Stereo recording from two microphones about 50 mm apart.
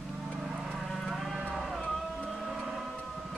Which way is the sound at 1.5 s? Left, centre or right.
Centre.